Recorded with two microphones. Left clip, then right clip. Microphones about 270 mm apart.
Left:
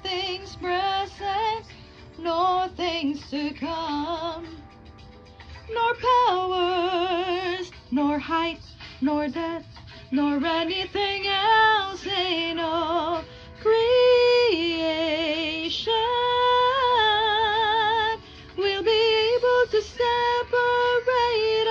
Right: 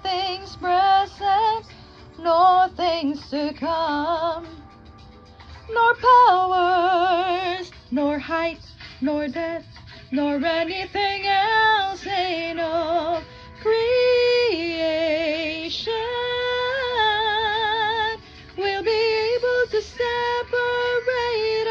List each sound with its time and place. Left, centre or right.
0.0 s music: centre
0.6 s female singing: centre
0.8 s female singing: centre
2.8 s female singing: centre
5.9 s female singing: centre
6.5 s music: centre
10.1 s female singing: centre